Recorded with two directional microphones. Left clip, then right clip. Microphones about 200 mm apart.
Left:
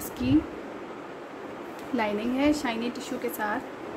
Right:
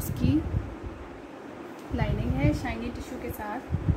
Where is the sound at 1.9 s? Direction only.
25° left (ahead or behind).